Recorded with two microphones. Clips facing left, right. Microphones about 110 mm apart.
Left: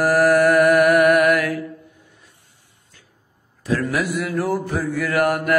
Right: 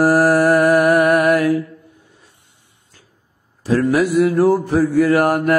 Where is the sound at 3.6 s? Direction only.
35° right (ahead or behind).